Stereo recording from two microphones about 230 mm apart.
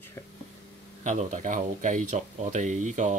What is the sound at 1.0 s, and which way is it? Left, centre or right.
Speech, right.